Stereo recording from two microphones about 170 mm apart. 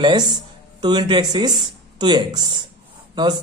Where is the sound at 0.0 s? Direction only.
25° right (ahead or behind).